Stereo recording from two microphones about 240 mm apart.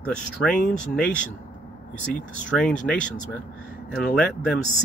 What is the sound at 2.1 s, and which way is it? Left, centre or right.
Speech, centre.